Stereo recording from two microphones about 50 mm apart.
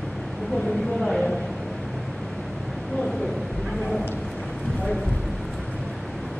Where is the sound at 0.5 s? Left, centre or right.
Centre.